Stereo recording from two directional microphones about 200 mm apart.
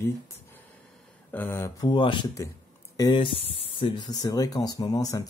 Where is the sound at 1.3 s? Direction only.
10° left (ahead or behind).